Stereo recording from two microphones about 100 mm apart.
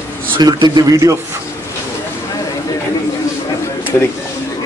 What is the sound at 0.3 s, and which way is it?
Speech, 50° right (ahead or behind).